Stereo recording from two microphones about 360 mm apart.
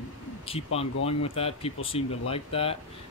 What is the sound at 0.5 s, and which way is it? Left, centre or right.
Speech, centre.